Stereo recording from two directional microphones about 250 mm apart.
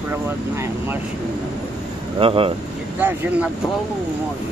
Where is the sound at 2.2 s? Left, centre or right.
Right.